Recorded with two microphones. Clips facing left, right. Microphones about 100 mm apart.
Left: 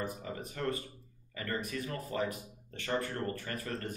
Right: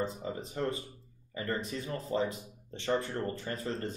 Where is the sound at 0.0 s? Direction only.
25° right (ahead or behind).